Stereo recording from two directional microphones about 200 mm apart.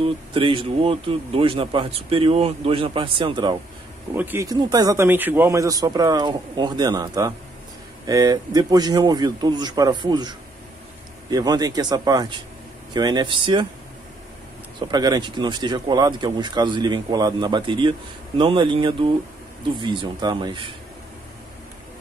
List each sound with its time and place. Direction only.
0.0 s speech: 25° right (ahead or behind)
4.1 s a man's voice: 10° right (ahead or behind)
14.8 s speech: 20° right (ahead or behind)